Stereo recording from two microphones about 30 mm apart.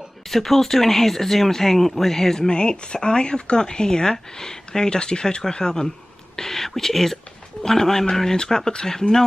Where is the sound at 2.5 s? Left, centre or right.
Left.